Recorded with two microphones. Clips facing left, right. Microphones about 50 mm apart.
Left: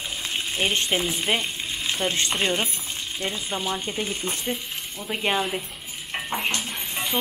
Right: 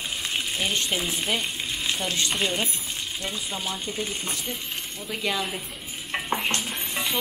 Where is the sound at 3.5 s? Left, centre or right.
Left.